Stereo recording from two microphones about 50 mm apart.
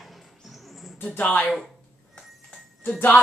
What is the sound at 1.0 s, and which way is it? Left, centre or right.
Speech, left.